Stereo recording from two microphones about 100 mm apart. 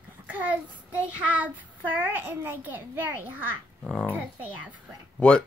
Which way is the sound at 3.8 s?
Centre (ahead or behind).